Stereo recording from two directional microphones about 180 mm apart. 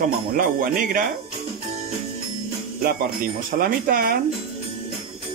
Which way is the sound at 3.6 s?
55° right (ahead or behind).